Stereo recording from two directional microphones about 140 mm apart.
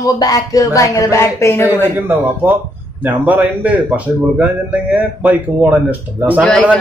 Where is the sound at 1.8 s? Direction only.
15° right (ahead or behind).